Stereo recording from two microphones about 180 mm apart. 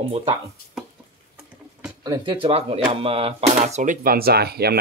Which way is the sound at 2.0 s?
25° right (ahead or behind).